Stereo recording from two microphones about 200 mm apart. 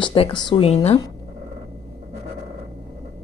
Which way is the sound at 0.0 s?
25° left (ahead or behind).